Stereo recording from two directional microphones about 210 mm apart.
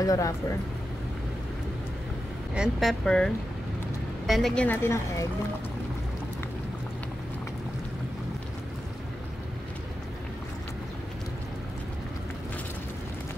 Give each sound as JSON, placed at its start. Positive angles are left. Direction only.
{"t": 0.0, "sound": "a woman's voice", "side_deg": 15}
{"t": 2.5, "sound": "speech", "side_deg": 0}
{"t": 4.3, "sound": "a woman's voice", "side_deg": 0}